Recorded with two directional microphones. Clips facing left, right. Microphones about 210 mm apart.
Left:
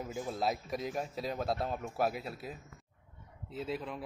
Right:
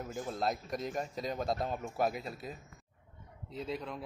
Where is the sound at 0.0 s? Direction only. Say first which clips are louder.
Left 1 dB; centre (ahead or behind).